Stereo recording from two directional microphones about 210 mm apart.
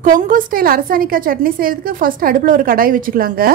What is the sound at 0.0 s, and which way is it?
A woman's voice, 40° right (ahead or behind).